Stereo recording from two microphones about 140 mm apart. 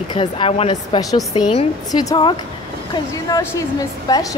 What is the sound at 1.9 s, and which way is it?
Speech, 30° left (ahead or behind).